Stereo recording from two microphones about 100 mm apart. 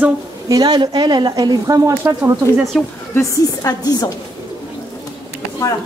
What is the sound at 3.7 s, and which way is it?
Speech, 40° left (ahead or behind).